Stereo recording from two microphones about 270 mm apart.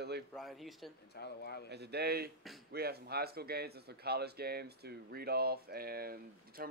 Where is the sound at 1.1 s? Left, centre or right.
Left.